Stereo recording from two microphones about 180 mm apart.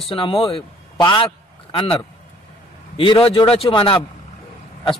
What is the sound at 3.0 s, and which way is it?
A man's voice, 30° left (ahead or behind).